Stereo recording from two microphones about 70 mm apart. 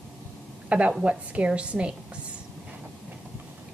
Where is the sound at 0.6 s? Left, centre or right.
Centre.